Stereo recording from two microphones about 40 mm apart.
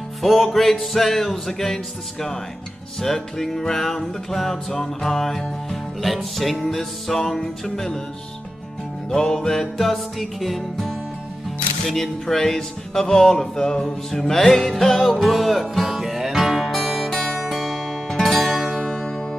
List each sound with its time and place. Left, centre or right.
0.2 s music: centre
9.1 s music: centre
17.1 s music: centre
17.4 s music: centre